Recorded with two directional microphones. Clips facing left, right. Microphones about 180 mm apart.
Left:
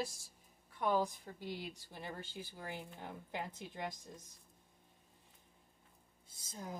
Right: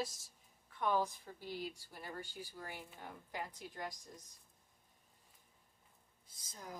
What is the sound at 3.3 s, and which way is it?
Speech, 25° left (ahead or behind).